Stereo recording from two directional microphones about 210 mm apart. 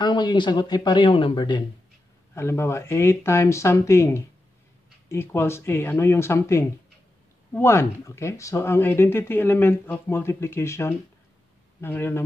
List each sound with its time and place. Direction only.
0.0 s speech: 20° left (ahead or behind)
2.3 s speech: 10° left (ahead or behind)